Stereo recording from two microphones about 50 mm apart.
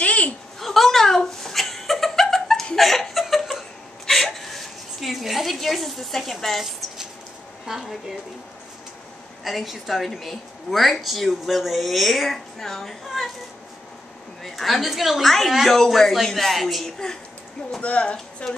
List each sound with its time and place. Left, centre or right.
0.0 s a sound: left
0.6 s chuckle: centre
7.7 s a woman's voice: centre
9.4 s a woman's voice: centre
14.4 s a woman's voice: centre
17.6 s speech: left